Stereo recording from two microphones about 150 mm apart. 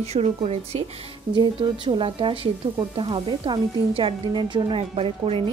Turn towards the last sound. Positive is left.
turn(degrees=-40)  # may be behind; listen again after turning